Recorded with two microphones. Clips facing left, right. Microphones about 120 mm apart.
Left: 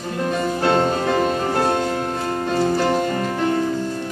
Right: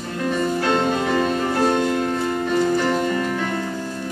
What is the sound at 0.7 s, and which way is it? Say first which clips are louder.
Music: left 3 dB; 35° left (ahead or behind).